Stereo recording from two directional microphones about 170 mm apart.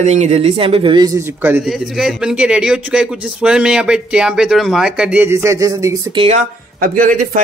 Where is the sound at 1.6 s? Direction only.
Centre (ahead or behind); by 5.9 s 20° right (ahead or behind).